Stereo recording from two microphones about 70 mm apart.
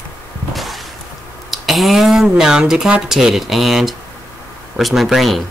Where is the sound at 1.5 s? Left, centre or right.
Centre.